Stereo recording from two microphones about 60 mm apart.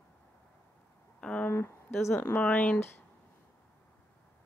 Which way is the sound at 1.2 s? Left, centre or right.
Centre.